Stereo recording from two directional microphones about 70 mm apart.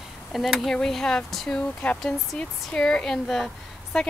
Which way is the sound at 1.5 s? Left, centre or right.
Centre.